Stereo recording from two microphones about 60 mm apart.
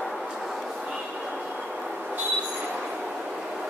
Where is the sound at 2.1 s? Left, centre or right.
Right.